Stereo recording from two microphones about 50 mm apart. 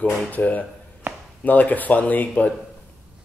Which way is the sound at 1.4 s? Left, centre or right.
Left.